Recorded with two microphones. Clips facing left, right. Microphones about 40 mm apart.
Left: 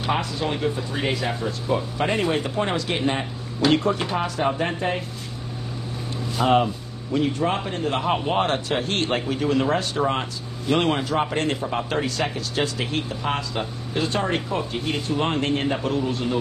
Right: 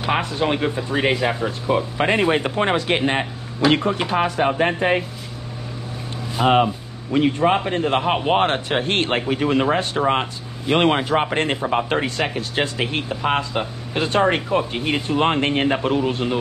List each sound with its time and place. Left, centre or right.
0.1 s speech: right
4.2 s speech: right
6.4 s speech: right
13.9 s speech: right